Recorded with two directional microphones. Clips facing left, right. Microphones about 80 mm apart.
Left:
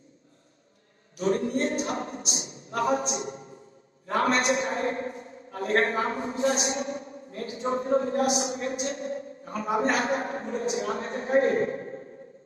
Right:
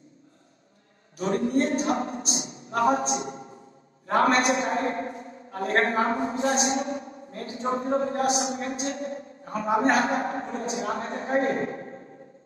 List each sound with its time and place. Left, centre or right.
1.1 s a man's voice: right